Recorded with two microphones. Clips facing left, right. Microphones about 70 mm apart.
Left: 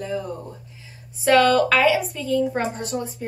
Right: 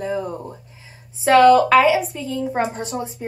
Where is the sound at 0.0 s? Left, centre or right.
Right.